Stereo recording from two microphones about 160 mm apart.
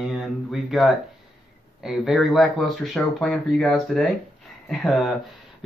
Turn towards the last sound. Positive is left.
turn(degrees=0)  # may be behind; listen again after turning